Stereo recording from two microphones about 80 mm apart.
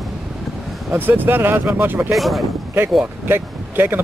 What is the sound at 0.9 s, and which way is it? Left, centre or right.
Speech, right.